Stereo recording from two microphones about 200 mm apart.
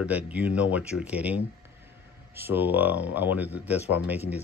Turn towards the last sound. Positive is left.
turn(degrees=-10)  # may be behind; listen again after turning